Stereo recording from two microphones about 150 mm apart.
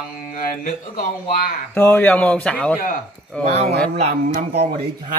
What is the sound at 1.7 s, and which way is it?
Speech, 15° left (ahead or behind).